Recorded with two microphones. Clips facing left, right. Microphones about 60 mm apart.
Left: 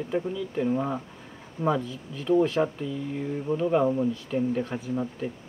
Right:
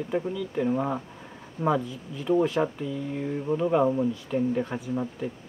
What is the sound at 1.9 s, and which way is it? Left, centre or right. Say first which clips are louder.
Speech: left 1 dB; right.